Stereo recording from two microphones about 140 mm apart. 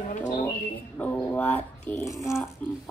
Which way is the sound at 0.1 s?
60° left (ahead or behind).